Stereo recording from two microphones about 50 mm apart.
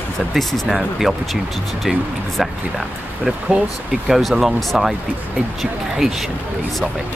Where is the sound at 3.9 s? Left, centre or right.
Centre.